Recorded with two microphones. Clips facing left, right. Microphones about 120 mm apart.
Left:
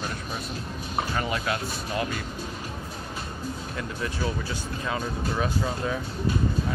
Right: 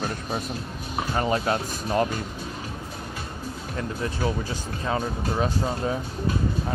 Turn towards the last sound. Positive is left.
turn(degrees=-30)  # may be behind; listen again after turning